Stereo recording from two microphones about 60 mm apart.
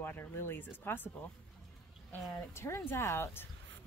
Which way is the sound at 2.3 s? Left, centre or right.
Left.